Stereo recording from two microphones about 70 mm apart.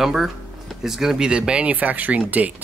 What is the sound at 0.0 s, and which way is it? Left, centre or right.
Speech, centre.